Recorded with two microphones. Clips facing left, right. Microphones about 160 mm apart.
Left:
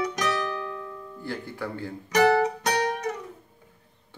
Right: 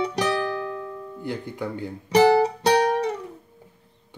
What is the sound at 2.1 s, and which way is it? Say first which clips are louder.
Music: right 4 dB; 30° right (ahead or behind).